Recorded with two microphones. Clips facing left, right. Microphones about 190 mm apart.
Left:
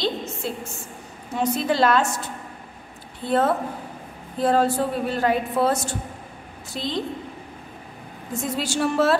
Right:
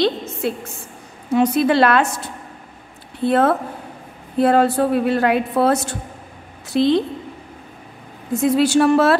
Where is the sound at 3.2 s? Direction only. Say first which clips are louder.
Right 5 dB; 65° right (ahead or behind).